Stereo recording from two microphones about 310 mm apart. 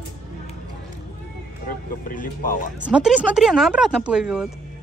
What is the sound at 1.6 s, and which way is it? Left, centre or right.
Speech, left.